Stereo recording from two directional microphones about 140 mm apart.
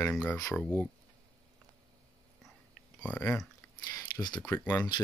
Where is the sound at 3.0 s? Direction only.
10° left (ahead or behind).